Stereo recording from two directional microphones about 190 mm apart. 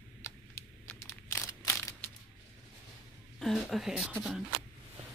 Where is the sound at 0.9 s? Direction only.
15° left (ahead or behind).